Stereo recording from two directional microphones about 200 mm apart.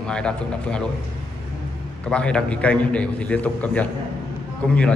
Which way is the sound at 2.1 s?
5° left (ahead or behind).